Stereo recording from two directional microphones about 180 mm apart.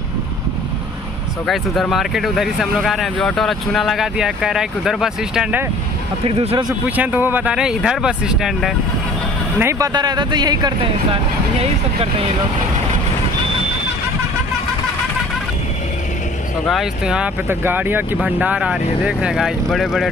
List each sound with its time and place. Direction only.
1.5 s speech: centre (ahead or behind)
6.2 s speech: 30° right (ahead or behind)
7.0 s speech: 10° right (ahead or behind)
9.6 s speech: 15° right (ahead or behind)
16.6 s speech: centre (ahead or behind)